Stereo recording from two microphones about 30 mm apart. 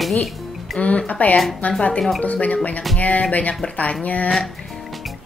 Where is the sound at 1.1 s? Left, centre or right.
Left.